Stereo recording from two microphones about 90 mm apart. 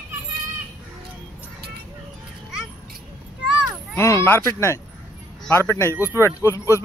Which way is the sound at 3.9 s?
30° left (ahead or behind).